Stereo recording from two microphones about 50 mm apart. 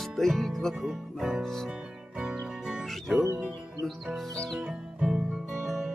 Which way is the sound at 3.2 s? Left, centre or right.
Right.